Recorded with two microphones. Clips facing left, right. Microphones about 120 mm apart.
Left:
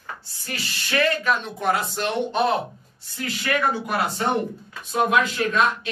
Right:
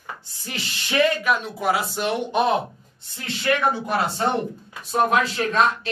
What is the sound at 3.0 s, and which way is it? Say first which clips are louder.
Speech: right 3 dB; 25° right (ahead or behind).